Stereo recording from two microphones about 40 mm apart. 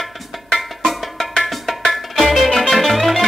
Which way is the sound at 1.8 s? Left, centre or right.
Centre.